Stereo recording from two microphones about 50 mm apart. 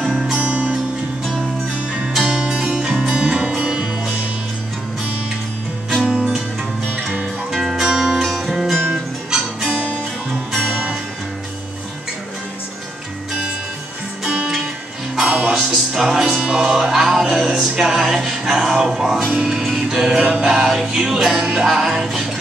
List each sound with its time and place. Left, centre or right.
0.4 s music: right
2.1 s music: centre
6.0 s music: right
7.5 s music: centre
14.2 s music: centre